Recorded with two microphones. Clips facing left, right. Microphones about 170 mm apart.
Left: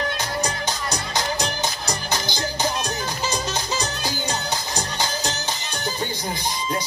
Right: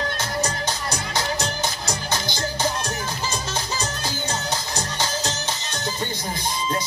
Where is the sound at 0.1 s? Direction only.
15° left (ahead or behind).